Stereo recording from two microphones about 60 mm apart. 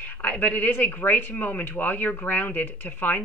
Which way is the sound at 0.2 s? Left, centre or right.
Left.